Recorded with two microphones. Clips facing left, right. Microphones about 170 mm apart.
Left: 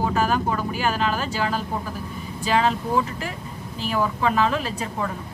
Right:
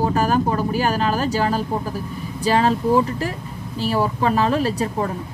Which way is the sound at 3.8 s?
35° right (ahead or behind).